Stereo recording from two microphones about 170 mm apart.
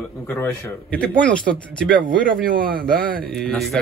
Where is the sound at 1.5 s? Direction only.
60° right (ahead or behind).